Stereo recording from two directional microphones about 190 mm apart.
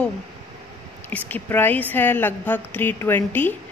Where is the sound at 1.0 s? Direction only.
10° left (ahead or behind).